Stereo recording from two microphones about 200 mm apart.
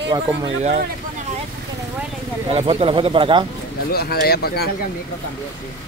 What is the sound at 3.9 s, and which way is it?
Speech, 50° left (ahead or behind).